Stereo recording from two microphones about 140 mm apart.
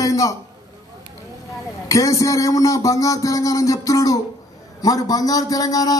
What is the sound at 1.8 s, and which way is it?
Speech, 25° left (ahead or behind).